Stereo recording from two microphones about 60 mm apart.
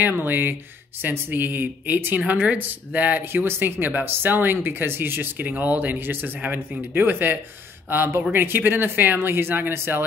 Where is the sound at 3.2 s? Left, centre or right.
Right.